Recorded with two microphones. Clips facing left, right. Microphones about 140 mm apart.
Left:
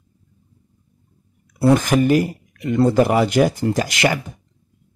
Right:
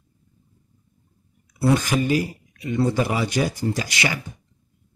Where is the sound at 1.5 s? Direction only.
50° left (ahead or behind).